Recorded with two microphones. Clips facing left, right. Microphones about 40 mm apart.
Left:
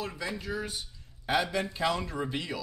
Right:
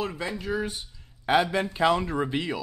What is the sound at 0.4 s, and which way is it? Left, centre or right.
Speech, right.